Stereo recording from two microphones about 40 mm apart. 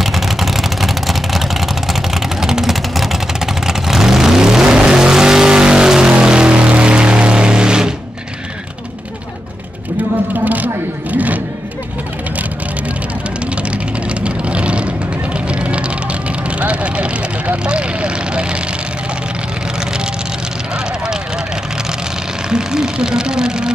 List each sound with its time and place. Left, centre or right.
0.0 s vehicle: centre; by 7.9 s right
10.3 s a sound: right
13.6 s vehicle: right
20.7 s vehicle: centre
22.5 s vehicle: centre